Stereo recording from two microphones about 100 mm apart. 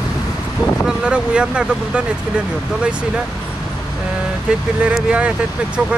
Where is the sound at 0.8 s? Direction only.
10° right (ahead or behind).